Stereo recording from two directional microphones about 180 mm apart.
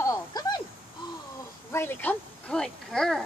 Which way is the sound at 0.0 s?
20° left (ahead or behind).